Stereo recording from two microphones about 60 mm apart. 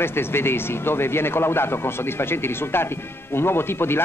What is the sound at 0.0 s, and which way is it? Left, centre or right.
A man's voice, left.